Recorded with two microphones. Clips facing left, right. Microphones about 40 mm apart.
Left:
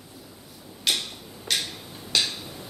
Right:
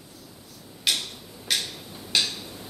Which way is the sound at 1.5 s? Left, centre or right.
Centre.